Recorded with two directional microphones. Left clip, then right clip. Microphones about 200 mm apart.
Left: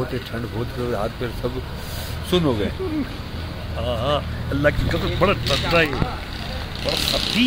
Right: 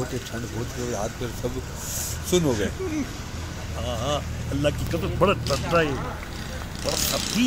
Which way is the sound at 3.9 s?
5° left (ahead or behind).